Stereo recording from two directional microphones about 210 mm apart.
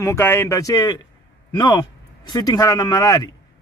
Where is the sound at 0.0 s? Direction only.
10° left (ahead or behind).